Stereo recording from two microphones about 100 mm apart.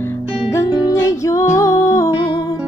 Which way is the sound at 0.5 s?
35° left (ahead or behind).